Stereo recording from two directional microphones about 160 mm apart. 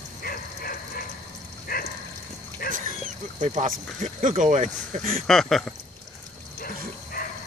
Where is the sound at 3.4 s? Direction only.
45° right (ahead or behind).